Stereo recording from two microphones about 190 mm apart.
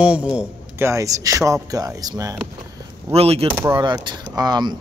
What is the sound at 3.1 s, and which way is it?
Speech, 30° right (ahead or behind).